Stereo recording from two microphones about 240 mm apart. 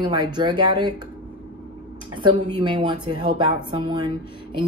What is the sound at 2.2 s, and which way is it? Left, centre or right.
Speech, centre.